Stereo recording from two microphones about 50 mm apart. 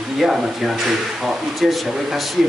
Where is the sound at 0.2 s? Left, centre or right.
Centre.